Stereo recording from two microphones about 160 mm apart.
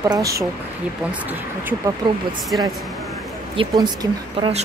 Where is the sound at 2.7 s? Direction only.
Centre (ahead or behind).